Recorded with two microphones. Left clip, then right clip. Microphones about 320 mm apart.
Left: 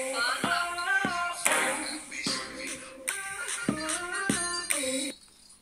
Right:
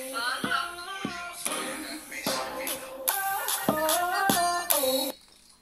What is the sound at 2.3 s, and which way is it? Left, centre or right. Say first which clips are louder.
Music: right 4 dB; right.